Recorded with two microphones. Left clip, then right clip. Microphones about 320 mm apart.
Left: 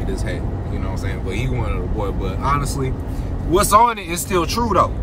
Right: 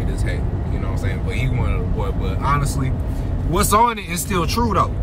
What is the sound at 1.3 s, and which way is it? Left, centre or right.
Speech, centre.